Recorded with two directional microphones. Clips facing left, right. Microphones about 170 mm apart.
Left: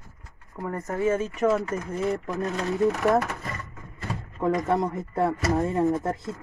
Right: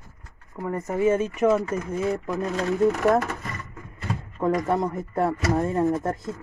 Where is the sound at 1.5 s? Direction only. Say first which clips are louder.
Right 2 dB; centre (ahead or behind).